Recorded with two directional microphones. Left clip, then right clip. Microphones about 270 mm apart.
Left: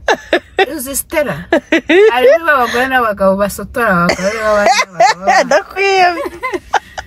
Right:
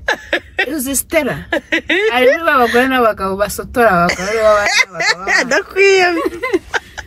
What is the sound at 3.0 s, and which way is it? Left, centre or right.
Speech, centre.